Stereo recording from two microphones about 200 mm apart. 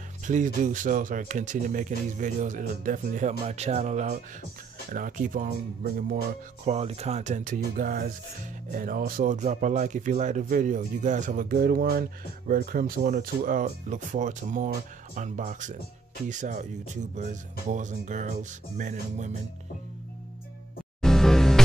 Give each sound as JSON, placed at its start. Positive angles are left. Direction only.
{"t": 0.3, "sound": "speech", "side_deg": -40}
{"t": 6.6, "sound": "speech", "side_deg": -30}
{"t": 21.0, "sound": "music", "side_deg": 0}